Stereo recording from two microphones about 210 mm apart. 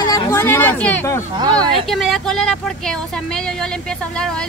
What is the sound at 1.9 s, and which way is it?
Speech, centre (ahead or behind).